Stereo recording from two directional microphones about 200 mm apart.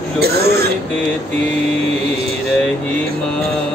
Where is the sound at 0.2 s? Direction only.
55° right (ahead or behind).